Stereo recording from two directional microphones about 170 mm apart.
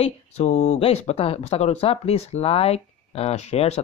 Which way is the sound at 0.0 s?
40° left (ahead or behind).